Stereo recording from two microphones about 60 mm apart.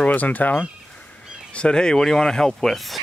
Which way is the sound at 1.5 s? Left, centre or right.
Centre.